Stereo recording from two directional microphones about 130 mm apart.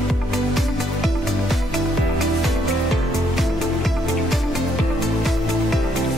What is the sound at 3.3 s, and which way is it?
Music, centre (ahead or behind).